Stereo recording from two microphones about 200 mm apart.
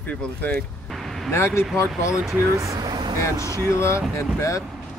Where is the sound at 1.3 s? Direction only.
10° left (ahead or behind).